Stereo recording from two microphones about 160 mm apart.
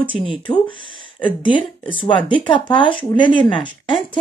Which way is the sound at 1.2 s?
30° left (ahead or behind).